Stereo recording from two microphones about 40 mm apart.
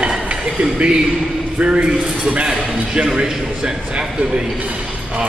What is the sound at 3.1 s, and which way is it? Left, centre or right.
Speech, right.